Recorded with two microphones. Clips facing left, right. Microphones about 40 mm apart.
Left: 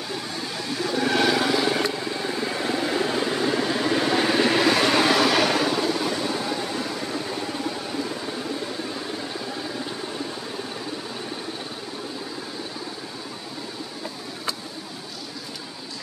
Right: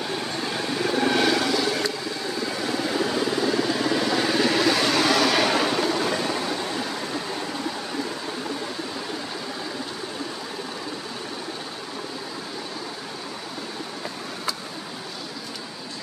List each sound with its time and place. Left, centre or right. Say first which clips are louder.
0.9 s vehicle: left 1 dB; centre